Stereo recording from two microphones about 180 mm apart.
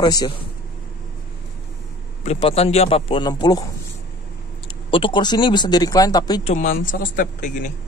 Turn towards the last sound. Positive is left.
turn(degrees=45)  # may be behind; listen again after turning